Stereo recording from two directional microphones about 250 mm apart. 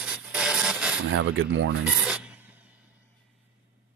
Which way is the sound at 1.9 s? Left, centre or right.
Centre.